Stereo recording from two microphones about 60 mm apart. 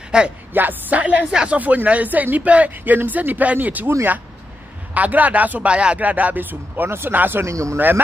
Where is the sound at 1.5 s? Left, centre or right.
Right.